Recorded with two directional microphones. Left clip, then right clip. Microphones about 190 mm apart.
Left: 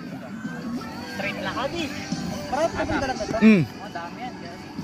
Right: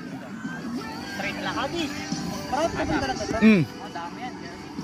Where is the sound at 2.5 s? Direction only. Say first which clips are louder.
Left 1 dB; 25° left (ahead or behind).